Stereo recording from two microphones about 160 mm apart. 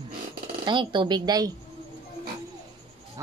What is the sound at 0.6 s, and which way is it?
Speech, 30° right (ahead or behind).